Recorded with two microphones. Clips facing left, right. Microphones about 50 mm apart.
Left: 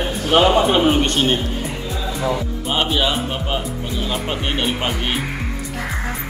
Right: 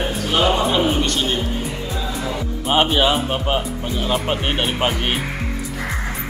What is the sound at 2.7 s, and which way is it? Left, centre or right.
Speech, centre.